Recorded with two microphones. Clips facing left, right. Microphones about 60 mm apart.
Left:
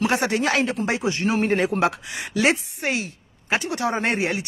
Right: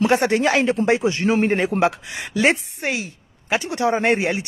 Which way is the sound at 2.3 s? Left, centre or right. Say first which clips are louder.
Right 2 dB; right.